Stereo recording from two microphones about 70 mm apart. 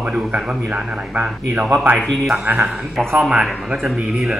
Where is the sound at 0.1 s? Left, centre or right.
Centre.